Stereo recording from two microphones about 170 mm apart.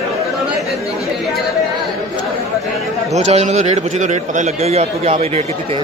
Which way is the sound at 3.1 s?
40° right (ahead or behind).